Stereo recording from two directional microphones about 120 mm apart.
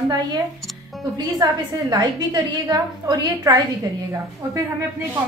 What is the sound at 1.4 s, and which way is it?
A woman's voice, 35° right (ahead or behind).